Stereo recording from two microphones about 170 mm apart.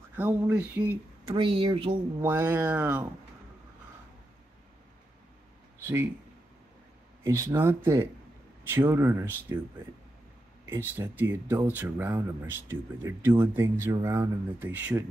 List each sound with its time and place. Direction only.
0.1 s speech: 10° right (ahead or behind)
1.3 s speech: 30° right (ahead or behind)
2.2 s speech: 15° right (ahead or behind)
5.8 s a sound: 15° right (ahead or behind)
7.2 s speech: 15° right (ahead or behind)
10.6 s speech: 10° right (ahead or behind)